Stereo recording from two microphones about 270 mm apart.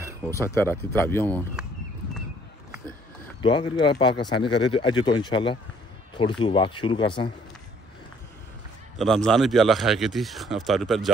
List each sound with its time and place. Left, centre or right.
0.3 s speech: centre
3.4 s speech: centre
8.9 s speech: centre